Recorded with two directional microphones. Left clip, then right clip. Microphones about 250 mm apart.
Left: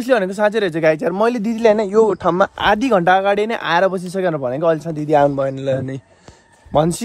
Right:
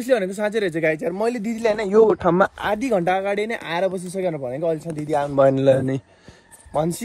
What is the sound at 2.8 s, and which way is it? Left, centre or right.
Speech, left.